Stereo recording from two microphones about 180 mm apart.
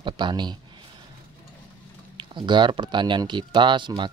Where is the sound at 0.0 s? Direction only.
25° right (ahead or behind).